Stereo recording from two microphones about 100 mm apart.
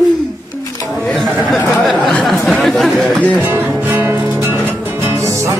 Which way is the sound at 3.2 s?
15° left (ahead or behind).